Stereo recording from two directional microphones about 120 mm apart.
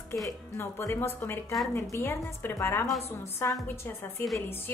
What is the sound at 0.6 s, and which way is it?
A woman's voice, 25° left (ahead or behind).